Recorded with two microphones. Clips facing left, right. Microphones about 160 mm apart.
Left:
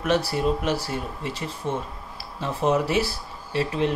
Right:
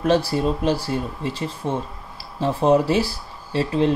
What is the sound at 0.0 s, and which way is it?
Speech, 30° right (ahead or behind).